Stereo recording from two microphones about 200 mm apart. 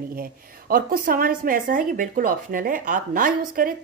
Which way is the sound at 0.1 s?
45° right (ahead or behind).